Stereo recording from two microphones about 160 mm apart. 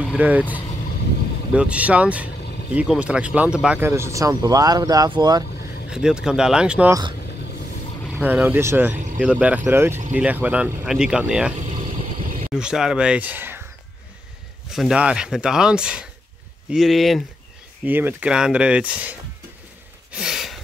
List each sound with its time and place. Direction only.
0.0 s speech: 10° right (ahead or behind)
1.5 s speech: 5° right (ahead or behind); by 5.4 s 25° right (ahead or behind)
5.9 s speech: 5° right (ahead or behind)
6.9 s speech: 25° right (ahead or behind)
8.1 s speech: 10° right (ahead or behind)
12.5 s speech: 5° right (ahead or behind)
14.7 s speech: 5° right (ahead or behind)
17.8 s speech: 10° right (ahead or behind)
20.1 s a sound: 5° right (ahead or behind)